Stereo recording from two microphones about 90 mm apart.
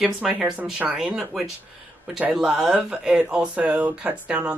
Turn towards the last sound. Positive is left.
turn(degrees=-10)  # may be behind; listen again after turning